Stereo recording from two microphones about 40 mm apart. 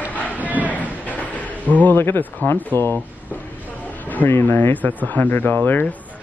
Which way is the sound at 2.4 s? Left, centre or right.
Left.